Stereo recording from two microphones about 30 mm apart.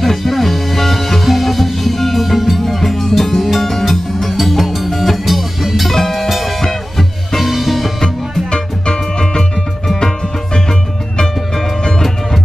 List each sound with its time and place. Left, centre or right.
0.0 s music: centre
6.6 s music: centre
7.3 s music: centre
8.5 s music: left
10.7 s music: centre